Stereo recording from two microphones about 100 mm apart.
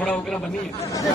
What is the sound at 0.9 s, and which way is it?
Speech, 35° left (ahead or behind).